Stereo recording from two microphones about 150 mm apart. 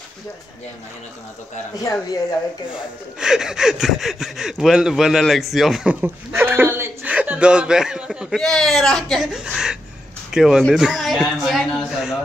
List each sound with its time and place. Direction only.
1.8 s speech: 20° left (ahead or behind)
2.7 s speech: 5° right (ahead or behind)